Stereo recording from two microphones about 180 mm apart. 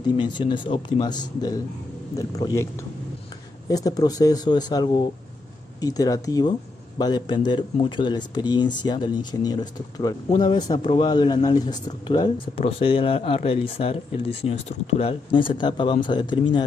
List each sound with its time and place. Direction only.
0.0 s speech: 25° left (ahead or behind)